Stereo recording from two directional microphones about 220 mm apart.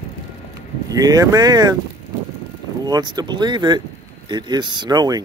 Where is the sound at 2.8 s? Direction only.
15° right (ahead or behind).